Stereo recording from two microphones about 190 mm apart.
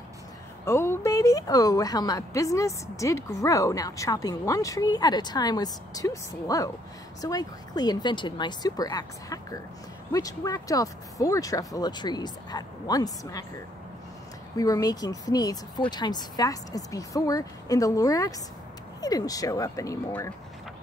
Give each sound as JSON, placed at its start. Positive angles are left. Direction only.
{"t": 0.7, "sound": "a woman's voice", "side_deg": 15}
{"t": 14.6, "sound": "a woman's voice", "side_deg": 20}